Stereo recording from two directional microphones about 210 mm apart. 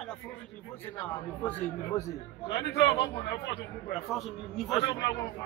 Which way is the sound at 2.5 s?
55° left (ahead or behind).